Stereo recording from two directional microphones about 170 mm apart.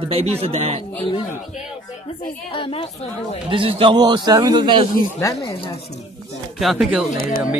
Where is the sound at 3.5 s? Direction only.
30° right (ahead or behind).